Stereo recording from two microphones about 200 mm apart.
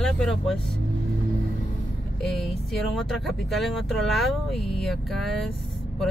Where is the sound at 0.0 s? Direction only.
Centre (ahead or behind).